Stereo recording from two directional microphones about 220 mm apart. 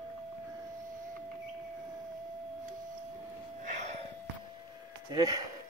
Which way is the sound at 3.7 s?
30° right (ahead or behind).